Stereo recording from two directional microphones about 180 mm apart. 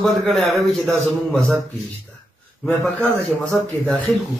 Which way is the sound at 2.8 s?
10° left (ahead or behind).